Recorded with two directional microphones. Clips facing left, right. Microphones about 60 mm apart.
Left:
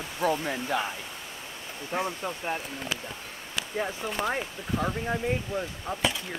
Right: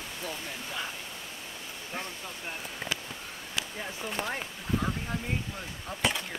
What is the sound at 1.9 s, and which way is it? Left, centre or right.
Speech, left.